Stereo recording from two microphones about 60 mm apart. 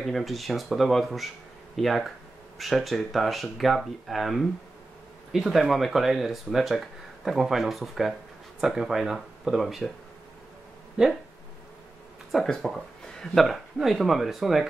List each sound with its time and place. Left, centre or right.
0.0 s speech: centre
11.0 s speech: centre
12.4 s speech: centre